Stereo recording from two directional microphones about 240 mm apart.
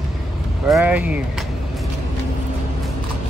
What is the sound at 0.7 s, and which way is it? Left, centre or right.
Speech, centre.